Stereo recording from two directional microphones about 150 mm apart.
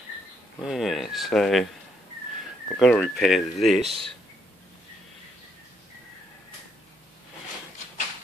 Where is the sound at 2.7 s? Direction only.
5° left (ahead or behind).